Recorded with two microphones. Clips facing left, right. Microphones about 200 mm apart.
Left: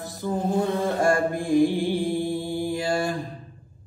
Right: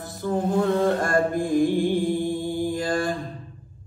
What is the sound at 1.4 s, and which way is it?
Mantra, 45° right (ahead or behind).